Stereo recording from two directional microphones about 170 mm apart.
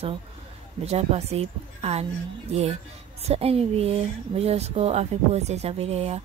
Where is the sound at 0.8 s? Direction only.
40° right (ahead or behind).